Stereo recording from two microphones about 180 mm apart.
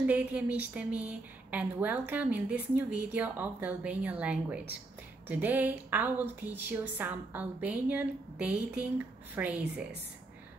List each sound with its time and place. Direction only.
0.0 s a woman's voice: 5° right (ahead or behind)